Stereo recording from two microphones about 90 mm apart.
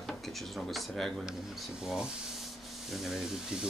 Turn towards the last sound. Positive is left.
turn(degrees=-5)  # may be behind; listen again after turning